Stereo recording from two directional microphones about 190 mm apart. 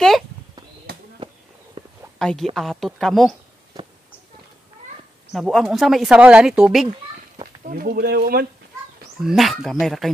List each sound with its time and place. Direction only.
1.8 s a sound: 30° right (ahead or behind)
2.1 s a woman's voice: 5° left (ahead or behind)
5.3 s speech: centre (ahead or behind)
7.6 s speech: 50° right (ahead or behind)
9.2 s speech: centre (ahead or behind)